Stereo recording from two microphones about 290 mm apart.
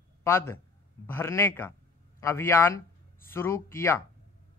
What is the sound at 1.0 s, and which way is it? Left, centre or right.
A man's voice, centre.